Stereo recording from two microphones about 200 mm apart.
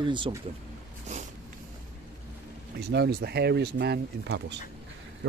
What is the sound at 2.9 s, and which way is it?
Speech, 55° right (ahead or behind).